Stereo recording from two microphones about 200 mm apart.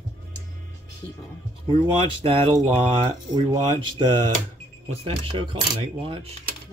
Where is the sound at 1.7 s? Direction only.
25° right (ahead or behind).